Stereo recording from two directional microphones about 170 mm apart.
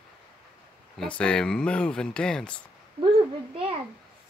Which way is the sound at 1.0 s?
5° left (ahead or behind).